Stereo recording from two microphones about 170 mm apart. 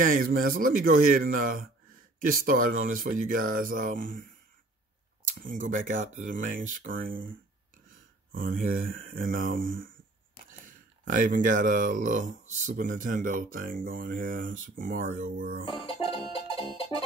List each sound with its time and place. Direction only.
0.0 s speech: 55° right (ahead or behind)
15.8 s music: 30° left (ahead or behind)